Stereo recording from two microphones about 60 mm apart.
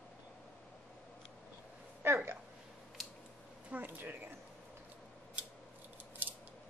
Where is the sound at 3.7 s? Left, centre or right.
Right.